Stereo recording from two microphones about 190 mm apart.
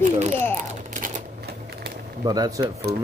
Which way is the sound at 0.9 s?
40° right (ahead or behind).